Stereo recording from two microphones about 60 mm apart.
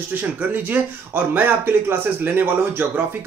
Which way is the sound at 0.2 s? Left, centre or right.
Right.